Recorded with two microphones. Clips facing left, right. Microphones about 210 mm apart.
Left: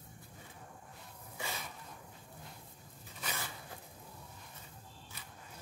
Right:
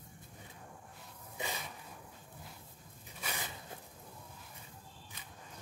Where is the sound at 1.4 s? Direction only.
20° right (ahead or behind).